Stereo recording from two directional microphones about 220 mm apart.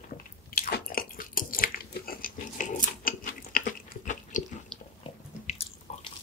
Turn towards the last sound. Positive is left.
turn(degrees=25)  # may be behind; listen again after turning